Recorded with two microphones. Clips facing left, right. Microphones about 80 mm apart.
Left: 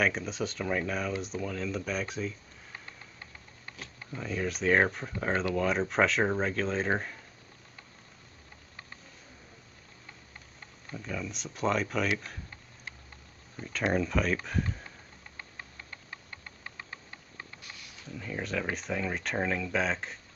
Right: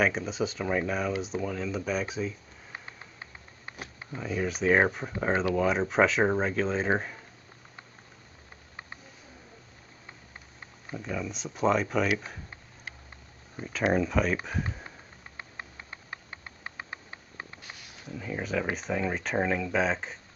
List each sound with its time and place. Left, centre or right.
0.0 s speech: centre
4.2 s speech: centre
10.9 s speech: centre
13.9 s speech: centre
17.6 s a sound: right
18.1 s speech: centre